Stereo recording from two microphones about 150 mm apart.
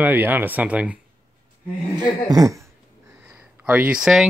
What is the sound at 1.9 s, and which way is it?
Speech, 25° right (ahead or behind).